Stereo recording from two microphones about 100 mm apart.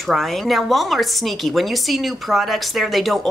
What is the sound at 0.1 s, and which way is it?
Speech, centre (ahead or behind).